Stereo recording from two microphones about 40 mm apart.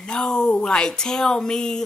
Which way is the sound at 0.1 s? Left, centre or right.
Centre.